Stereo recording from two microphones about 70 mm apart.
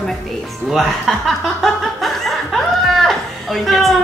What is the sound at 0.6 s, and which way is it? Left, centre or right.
Chuckle, centre.